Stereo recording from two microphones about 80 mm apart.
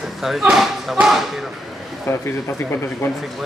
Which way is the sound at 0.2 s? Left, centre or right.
Centre.